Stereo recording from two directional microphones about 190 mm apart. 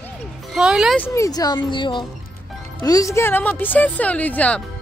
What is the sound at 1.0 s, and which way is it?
A woman's voice, 15° left (ahead or behind).